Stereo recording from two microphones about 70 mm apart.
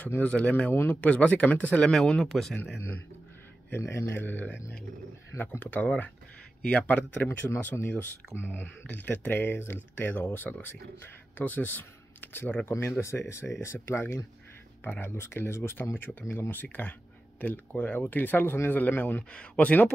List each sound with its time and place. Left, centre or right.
0.0 s speech: left
1.9 s speech: centre
3.7 s speech: left
12.7 s speech: left